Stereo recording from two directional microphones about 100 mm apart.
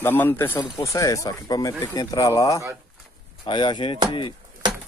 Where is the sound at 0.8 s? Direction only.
35° left (ahead or behind).